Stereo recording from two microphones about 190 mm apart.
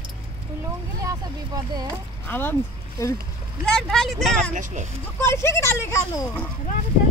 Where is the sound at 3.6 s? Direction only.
Centre (ahead or behind).